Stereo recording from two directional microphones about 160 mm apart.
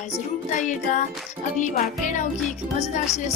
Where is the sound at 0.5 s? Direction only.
50° left (ahead or behind).